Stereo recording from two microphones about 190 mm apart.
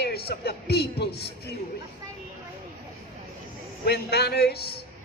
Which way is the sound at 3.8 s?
55° left (ahead or behind).